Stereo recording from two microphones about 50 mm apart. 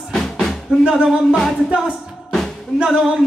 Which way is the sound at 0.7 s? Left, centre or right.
Centre.